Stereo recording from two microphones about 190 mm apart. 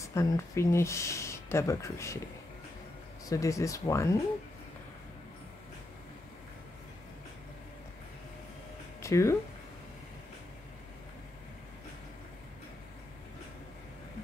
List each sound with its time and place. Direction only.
0.0 s speech: 15° left (ahead or behind)
3.3 s speech: 15° left (ahead or behind)
9.0 s speech: 15° left (ahead or behind)